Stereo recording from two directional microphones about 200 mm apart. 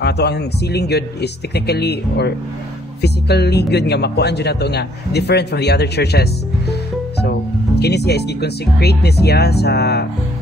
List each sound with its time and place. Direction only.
0.0 s speech: 55° left (ahead or behind)
6.7 s music: 55° left (ahead or behind)
7.8 s speech: 55° left (ahead or behind)